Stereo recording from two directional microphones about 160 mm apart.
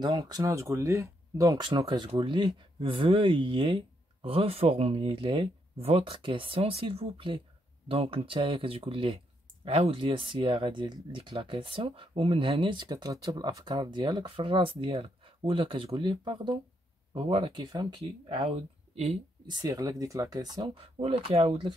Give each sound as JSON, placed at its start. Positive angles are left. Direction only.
{"t": 0.0, "sound": "speech", "side_deg": -25}